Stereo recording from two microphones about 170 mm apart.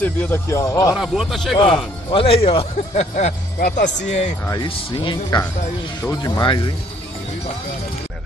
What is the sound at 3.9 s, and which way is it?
Speech, 45° left (ahead or behind).